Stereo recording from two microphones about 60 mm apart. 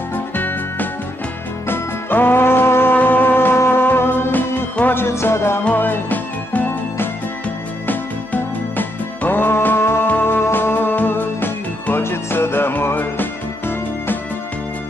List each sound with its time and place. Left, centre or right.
1.7 s music: left
5.7 s music: left